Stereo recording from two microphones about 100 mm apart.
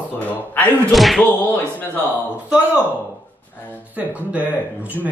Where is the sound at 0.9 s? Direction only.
Centre (ahead or behind).